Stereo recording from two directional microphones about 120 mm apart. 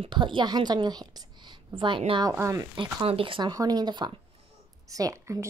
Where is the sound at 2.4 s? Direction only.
30° right (ahead or behind).